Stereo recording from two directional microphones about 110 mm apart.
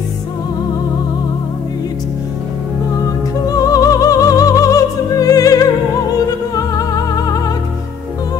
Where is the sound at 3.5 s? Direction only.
30° left (ahead or behind).